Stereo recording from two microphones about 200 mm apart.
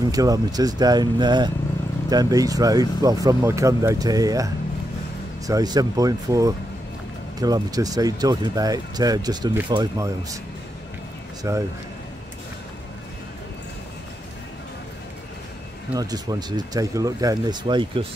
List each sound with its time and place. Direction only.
0.1 s speech: 20° right (ahead or behind)
5.5 s speech: 20° right (ahead or behind)
11.4 s speech: 15° right (ahead or behind)
15.9 s speech: 20° right (ahead or behind)